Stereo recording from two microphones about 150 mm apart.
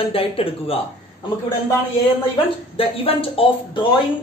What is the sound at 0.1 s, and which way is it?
Speech, 40° left (ahead or behind).